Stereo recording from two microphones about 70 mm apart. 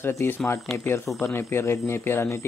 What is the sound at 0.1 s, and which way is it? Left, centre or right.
A man's voice, left.